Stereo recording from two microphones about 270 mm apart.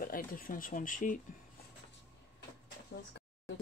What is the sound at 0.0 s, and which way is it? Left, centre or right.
Speech, left.